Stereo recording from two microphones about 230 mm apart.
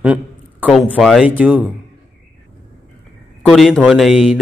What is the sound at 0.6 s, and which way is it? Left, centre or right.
A man's voice, centre.